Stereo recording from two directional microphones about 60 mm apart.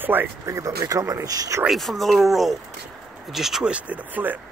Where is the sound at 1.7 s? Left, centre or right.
Centre.